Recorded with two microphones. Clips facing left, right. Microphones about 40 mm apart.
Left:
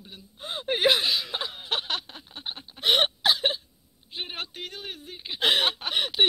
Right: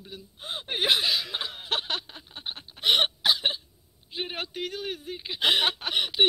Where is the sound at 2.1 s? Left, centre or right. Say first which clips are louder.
Even; centre.